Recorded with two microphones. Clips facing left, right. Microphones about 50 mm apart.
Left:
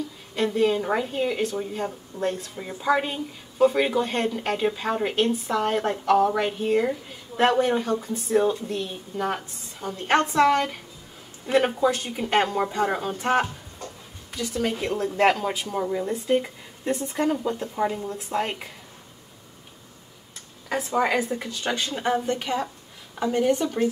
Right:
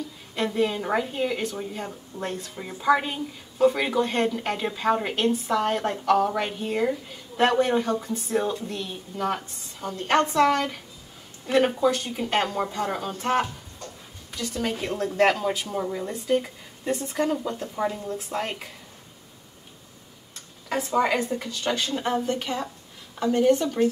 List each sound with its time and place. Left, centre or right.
0.4 s a woman's voice: centre
20.6 s a woman's voice: centre